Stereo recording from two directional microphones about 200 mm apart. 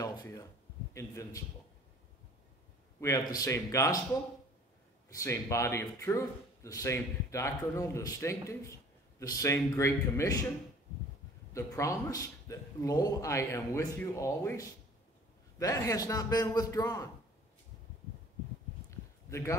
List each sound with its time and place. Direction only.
0.0 s a sound: 20° left (ahead or behind)
0.9 s speech: 15° left (ahead or behind)
3.0 s speech: 15° left (ahead or behind)
5.1 s speech: 15° left (ahead or behind)
11.5 s speech: 15° left (ahead or behind)
18.9 s a sound: 15° left (ahead or behind)